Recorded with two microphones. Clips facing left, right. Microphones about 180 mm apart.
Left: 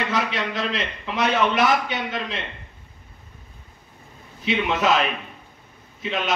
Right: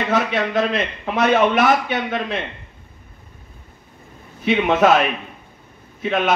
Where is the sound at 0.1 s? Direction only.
55° right (ahead or behind).